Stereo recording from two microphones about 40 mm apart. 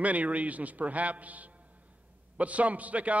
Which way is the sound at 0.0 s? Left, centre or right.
Right.